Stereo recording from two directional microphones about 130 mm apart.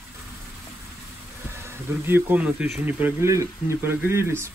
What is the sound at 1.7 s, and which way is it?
Speech, 20° right (ahead or behind).